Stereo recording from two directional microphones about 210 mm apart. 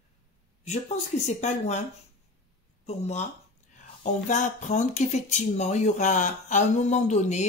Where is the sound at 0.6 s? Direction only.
30° left (ahead or behind).